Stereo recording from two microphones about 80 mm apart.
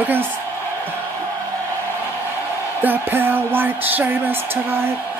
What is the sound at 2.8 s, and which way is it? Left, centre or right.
Speech, right.